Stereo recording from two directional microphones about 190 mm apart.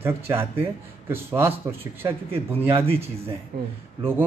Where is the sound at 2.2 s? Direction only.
30° right (ahead or behind).